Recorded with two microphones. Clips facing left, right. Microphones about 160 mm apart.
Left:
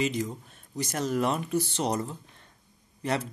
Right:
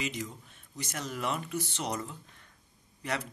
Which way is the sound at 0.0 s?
35° left (ahead or behind).